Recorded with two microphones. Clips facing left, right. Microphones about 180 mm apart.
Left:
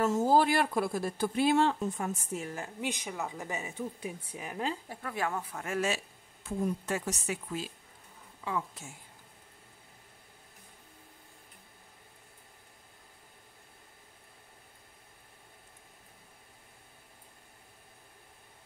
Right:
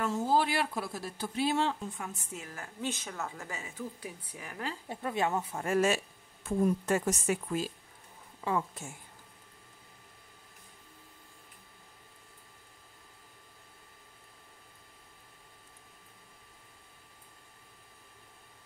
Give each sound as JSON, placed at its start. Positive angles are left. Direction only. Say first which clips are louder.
{"t": 0.0, "sound": "speech", "louder": "left 4 dB", "side_deg": 45}
{"t": 2.4, "sound": "a woman's voice", "louder": "right 2 dB", "side_deg": 25}
{"t": 4.8, "sound": "speech", "louder": "right 3 dB", "side_deg": -25}
{"t": 5.7, "sound": "a woman's voice", "louder": "right 5 dB", "side_deg": -45}